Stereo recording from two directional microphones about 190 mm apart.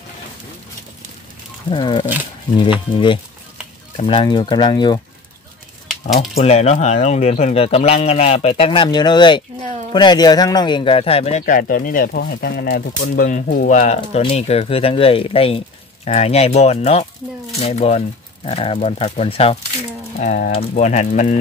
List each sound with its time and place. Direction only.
1.7 s speech: 25° left (ahead or behind)
6.4 s speech: 35° left (ahead or behind)
20.2 s speech: 45° left (ahead or behind)